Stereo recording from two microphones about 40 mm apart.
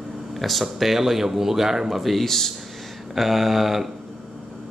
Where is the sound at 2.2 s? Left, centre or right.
Centre.